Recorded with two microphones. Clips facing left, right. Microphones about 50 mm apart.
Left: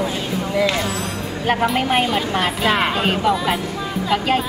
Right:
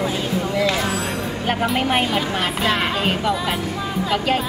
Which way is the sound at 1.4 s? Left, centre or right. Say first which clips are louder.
Left 3 dB; centre.